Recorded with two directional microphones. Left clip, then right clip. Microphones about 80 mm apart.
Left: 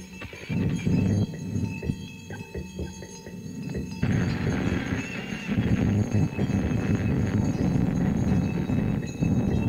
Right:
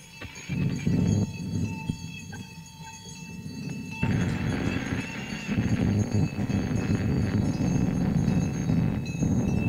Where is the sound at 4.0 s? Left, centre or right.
Left.